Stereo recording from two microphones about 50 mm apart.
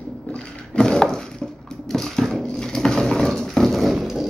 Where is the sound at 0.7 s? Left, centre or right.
Centre.